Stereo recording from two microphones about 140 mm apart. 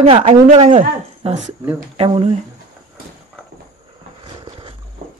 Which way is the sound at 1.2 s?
45° right (ahead or behind).